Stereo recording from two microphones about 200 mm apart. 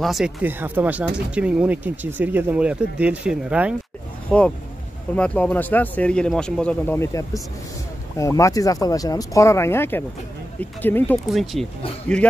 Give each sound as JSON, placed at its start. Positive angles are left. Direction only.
{"t": 0.0, "sound": "speech", "side_deg": 0}
{"t": 4.3, "sound": "speech", "side_deg": 5}